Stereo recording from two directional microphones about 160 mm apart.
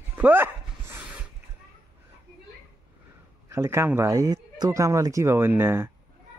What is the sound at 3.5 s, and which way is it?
Speech, 15° right (ahead or behind).